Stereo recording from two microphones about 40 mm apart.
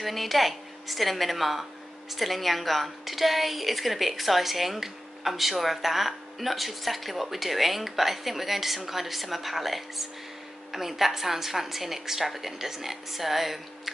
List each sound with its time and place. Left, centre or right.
0.0 s a woman's voice: centre